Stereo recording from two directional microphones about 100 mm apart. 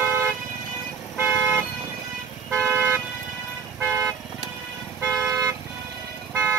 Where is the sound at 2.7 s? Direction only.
20° right (ahead or behind).